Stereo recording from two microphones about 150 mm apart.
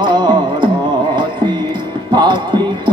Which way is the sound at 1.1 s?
30° right (ahead or behind).